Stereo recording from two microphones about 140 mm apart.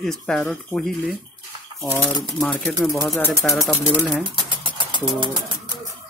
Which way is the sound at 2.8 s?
20° left (ahead or behind).